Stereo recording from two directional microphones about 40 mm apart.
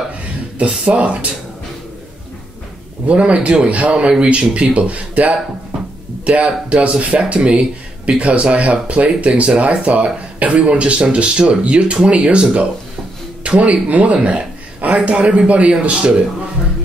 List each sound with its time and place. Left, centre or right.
0.2 s a man's voice: right
3.1 s speech: right